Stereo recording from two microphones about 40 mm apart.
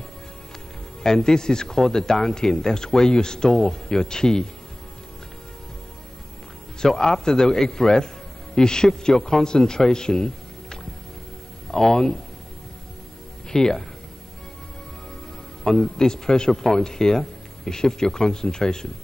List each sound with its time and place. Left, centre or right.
1.0 s a man's voice: centre
6.8 s a man's voice: centre
13.5 s speech: centre
15.6 s a man's voice: centre